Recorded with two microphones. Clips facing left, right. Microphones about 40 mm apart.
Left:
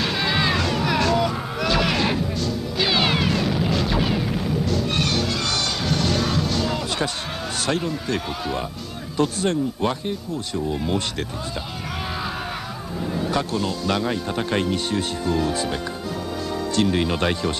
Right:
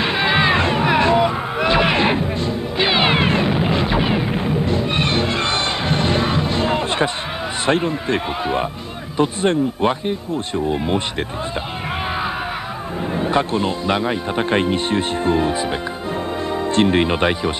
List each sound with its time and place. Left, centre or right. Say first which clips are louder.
0.0 s a sound: right 5 dB; right
7.6 s speech: right 6 dB; right
13.1 s speech: right 5 dB; right